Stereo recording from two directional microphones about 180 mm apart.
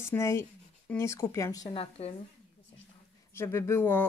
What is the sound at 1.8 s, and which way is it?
Speech, 35° left (ahead or behind).